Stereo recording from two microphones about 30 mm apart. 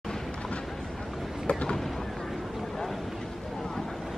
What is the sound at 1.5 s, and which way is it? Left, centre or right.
Boat, left.